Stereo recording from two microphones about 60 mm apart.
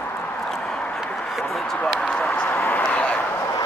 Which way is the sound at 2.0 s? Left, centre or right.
Centre.